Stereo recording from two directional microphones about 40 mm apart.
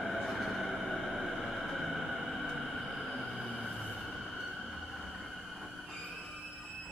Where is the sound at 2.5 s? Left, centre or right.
Centre.